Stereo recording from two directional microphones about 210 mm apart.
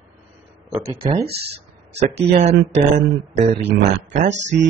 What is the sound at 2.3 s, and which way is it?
Speech, 30° right (ahead or behind).